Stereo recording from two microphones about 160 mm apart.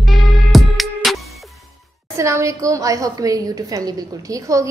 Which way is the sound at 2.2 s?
20° right (ahead or behind).